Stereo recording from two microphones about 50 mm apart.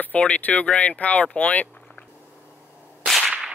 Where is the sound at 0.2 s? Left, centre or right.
Left.